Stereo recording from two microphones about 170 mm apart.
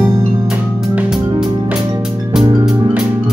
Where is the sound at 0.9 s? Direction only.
5° right (ahead or behind).